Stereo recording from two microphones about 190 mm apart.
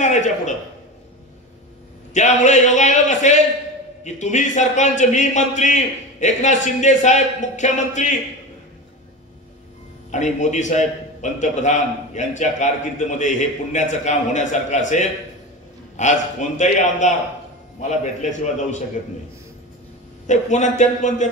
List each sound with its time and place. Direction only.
0.0 s a man's voice: 40° left (ahead or behind)
2.1 s a man's voice: 40° left (ahead or behind)
10.1 s a man's voice: 40° left (ahead or behind)
18.4 s a man's voice: 40° left (ahead or behind)
20.2 s a man's voice: 40° left (ahead or behind)